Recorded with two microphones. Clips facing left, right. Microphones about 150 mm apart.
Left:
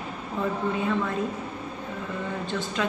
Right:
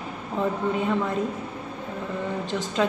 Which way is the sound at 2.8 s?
30° right (ahead or behind).